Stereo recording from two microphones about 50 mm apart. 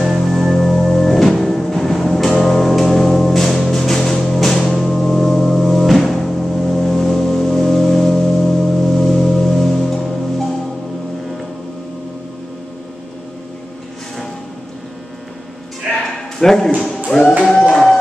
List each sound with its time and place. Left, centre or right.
0.3 s music: centre
6.3 s organ: centre
16.3 s a sound: centre